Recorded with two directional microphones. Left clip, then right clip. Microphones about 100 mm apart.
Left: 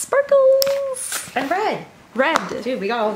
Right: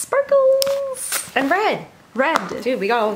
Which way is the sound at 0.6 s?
15° right (ahead or behind).